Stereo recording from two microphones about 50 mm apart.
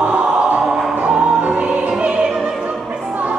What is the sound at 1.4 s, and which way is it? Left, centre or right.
Music, right.